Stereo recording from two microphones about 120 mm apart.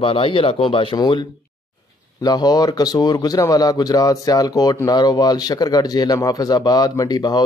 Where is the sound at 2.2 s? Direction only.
35° left (ahead or behind).